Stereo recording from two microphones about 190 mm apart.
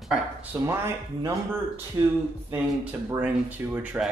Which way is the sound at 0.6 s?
15° right (ahead or behind).